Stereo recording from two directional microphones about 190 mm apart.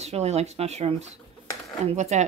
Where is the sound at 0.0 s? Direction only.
35° right (ahead or behind).